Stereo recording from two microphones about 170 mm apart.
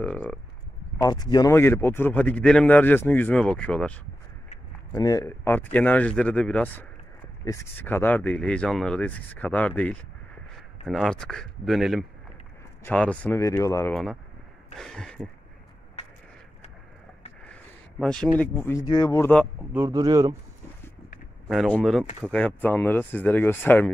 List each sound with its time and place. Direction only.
0.0 s speech: 5° left (ahead or behind)
0.9 s a man's voice: 25° left (ahead or behind); by 4.0 s 5° left (ahead or behind)
4.9 s a man's voice: 20° left (ahead or behind); by 15.2 s 5° left (ahead or behind)
16.0 s a sound: 40° left (ahead or behind)
18.0 s a man's voice: 5° left (ahead or behind); by 19.2 s 25° left (ahead or behind)
19.7 s speech: 20° right (ahead or behind)
21.5 s a man's voice: 5° left (ahead or behind)